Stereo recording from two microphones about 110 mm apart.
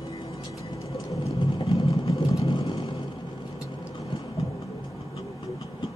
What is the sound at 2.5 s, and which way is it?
Vehicle, 50° left (ahead or behind).